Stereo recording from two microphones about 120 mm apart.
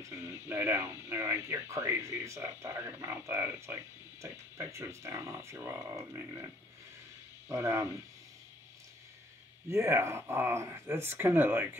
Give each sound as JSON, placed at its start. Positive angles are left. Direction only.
{"t": 0.0, "sound": "speech", "side_deg": -20}
{"t": 7.4, "sound": "speech", "side_deg": -25}
{"t": 9.7, "sound": "speech", "side_deg": -20}